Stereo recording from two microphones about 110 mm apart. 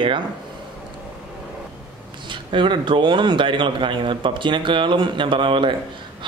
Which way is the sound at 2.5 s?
45° right (ahead or behind).